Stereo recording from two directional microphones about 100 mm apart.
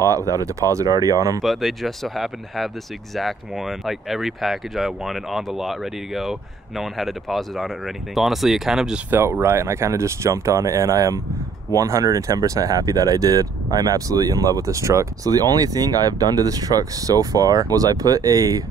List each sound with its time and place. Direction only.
0.0 s speech: 35° right (ahead or behind)
1.4 s speech: centre (ahead or behind)
9.1 s speech: 25° right (ahead or behind)